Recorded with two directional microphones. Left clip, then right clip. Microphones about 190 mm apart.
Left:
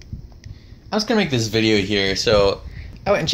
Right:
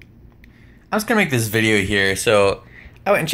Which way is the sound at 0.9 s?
5° right (ahead or behind).